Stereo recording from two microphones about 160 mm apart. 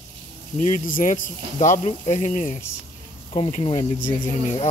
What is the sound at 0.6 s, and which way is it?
Speech, 50° left (ahead or behind).